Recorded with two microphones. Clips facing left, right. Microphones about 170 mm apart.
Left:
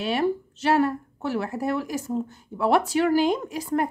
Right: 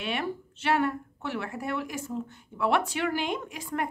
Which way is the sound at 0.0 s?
35° left (ahead or behind).